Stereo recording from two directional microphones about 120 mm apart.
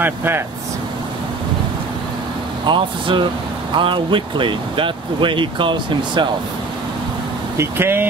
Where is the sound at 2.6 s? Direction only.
40° right (ahead or behind).